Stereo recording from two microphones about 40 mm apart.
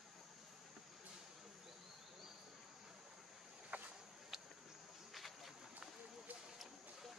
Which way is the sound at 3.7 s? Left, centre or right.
Right.